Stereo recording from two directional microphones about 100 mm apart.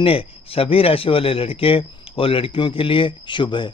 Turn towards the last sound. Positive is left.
turn(degrees=55)  # may be behind; listen again after turning